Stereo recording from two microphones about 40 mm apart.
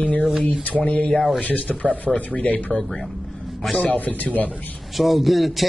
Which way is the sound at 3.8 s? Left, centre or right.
Left.